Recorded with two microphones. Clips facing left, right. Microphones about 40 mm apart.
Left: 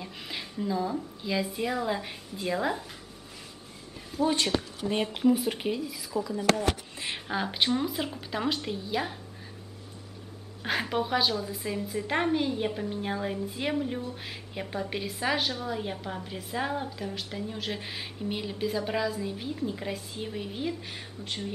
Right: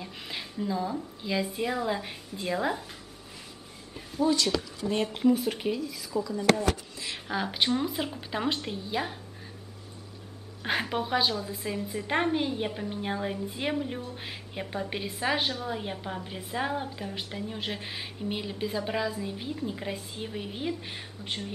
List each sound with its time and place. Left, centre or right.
0.0 s a woman's voice: centre
4.3 s speech: left
4.8 s speech: centre
5.2 s speech: centre
6.6 s a sound: left
7.2 s a woman's voice: centre
10.6 s a woman's voice: centre